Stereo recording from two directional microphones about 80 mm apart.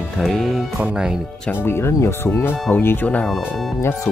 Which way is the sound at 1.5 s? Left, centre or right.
Left.